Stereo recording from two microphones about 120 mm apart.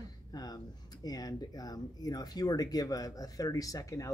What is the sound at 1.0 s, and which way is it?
Speech, 35° left (ahead or behind).